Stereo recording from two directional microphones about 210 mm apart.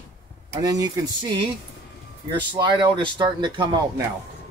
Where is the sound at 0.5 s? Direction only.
20° right (ahead or behind).